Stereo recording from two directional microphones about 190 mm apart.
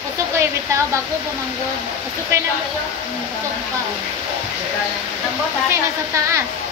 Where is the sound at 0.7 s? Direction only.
15° right (ahead or behind).